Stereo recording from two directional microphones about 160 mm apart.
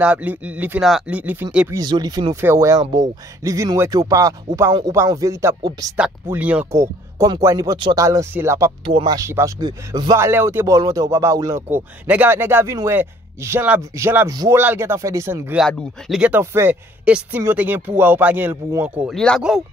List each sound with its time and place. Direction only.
0.0 s speech: 10° right (ahead or behind)
1.7 s speech: 25° right (ahead or behind)
8.8 s speech: 30° right (ahead or behind)
16.1 s speech: 10° right (ahead or behind)
19.0 s speech: 5° left (ahead or behind)